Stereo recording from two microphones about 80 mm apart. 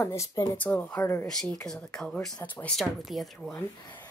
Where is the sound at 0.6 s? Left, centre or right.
Left.